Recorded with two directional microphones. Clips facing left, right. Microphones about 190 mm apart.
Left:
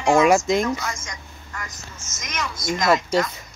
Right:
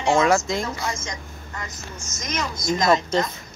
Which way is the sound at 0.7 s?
25° right (ahead or behind).